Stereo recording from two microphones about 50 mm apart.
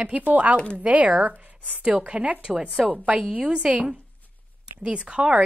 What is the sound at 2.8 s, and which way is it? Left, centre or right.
Speech, right.